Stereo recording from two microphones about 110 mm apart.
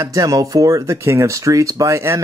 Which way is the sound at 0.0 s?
30° right (ahead or behind).